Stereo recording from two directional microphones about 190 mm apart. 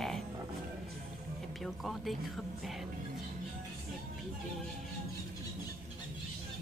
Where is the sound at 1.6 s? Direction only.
Centre (ahead or behind).